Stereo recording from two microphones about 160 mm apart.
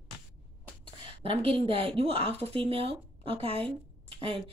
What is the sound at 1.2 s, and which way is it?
Speech, 35° right (ahead or behind).